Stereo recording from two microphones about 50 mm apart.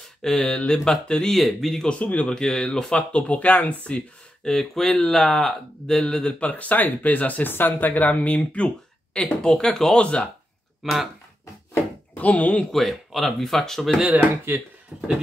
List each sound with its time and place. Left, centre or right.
0.2 s speech: centre
1.3 s speech: centre
1.9 s speech: left
2.3 s speech: centre
4.5 s speech: centre
9.9 s speech: left
10.8 s speech: centre
12.2 s speech: left
12.7 s speech: centre
14.5 s speech: right
14.9 s speech: centre